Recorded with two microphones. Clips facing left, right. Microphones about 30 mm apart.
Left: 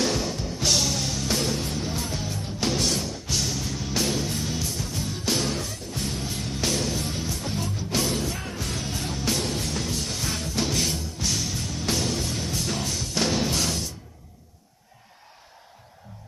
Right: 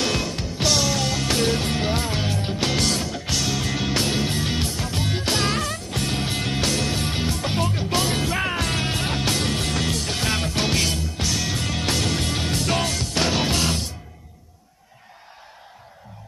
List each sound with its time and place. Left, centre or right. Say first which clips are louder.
0.1 s music: right 2 dB; right